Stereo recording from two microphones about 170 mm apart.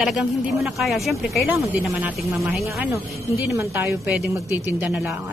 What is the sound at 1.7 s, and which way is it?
Speech, 10° right (ahead or behind).